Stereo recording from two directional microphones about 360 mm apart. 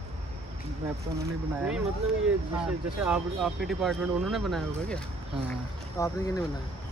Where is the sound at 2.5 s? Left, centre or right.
Centre.